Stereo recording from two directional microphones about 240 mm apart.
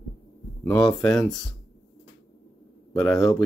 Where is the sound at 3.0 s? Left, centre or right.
Centre.